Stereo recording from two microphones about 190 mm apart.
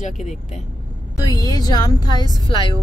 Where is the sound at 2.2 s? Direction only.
20° right (ahead or behind).